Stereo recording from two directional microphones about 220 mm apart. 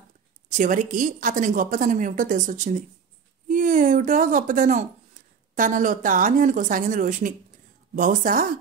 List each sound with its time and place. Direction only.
0.5 s a woman's voice: 35° right (ahead or behind)